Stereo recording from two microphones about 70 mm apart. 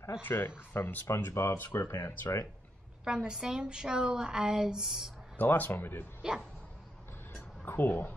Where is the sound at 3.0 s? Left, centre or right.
Centre.